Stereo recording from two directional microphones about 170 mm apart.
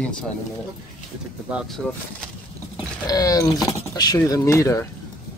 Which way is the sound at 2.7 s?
20° left (ahead or behind).